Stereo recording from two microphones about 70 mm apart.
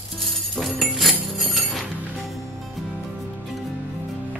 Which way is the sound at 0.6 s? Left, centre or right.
Centre.